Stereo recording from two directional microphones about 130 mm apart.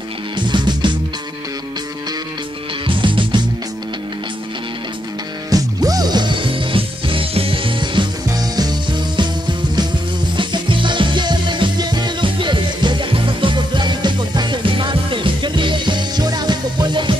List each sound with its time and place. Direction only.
0.4 s music: 35° right (ahead or behind)
2.9 s music: 40° right (ahead or behind)
5.5 s music: 30° right (ahead or behind)